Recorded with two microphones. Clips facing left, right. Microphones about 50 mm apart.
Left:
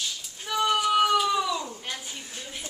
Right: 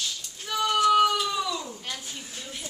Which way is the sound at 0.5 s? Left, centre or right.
Centre.